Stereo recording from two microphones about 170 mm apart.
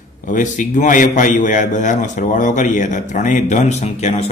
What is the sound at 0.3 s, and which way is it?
A man's voice, 50° left (ahead or behind).